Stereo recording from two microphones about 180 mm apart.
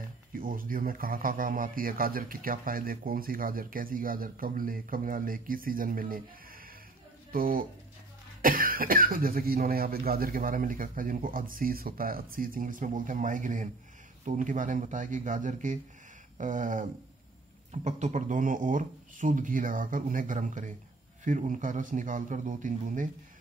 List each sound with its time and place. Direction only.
0.4 s a man's voice: 50° right (ahead or behind)
7.3 s a man's voice: 50° right (ahead or behind)
17.8 s a man's voice: 45° right (ahead or behind)